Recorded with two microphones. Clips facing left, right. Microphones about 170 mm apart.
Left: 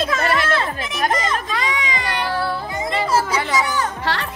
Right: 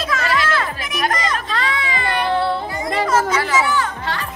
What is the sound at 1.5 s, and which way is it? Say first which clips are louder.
Speech: right 1 dB; 15° left (ahead or behind).